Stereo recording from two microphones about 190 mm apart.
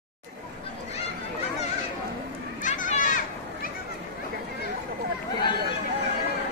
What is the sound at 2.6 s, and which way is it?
Children playing, 40° left (ahead or behind).